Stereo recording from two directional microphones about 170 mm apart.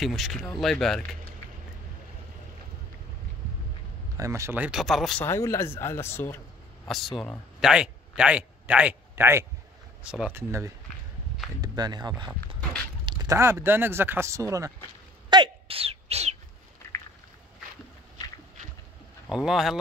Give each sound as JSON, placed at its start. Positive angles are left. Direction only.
{"t": 0.0, "sound": "speech", "side_deg": 0}
{"t": 4.2, "sound": "speech", "side_deg": -15}
{"t": 5.2, "sound": "speech", "side_deg": 15}
{"t": 6.9, "sound": "speech", "side_deg": 0}
{"t": 11.6, "sound": "speech", "side_deg": -25}
{"t": 15.2, "sound": "a sound", "side_deg": -25}
{"t": 19.2, "sound": "speech", "side_deg": -5}